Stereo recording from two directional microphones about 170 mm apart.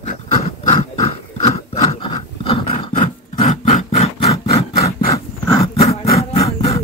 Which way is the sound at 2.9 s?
55° left (ahead or behind).